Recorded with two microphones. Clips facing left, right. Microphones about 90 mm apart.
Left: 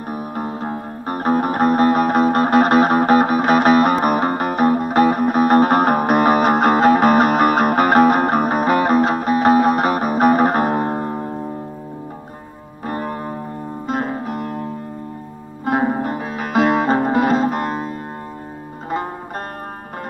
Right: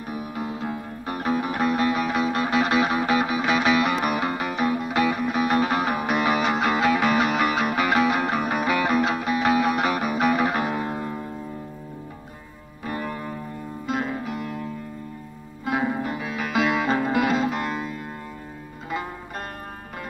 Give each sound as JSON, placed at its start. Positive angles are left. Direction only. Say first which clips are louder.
{"t": 0.1, "sound": "music", "louder": "left 5 dB", "side_deg": 45}
{"t": 12.8, "sound": "music", "louder": "left 5 dB", "side_deg": 40}